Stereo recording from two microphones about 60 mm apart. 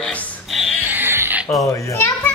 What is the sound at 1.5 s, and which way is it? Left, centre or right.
Speech, left.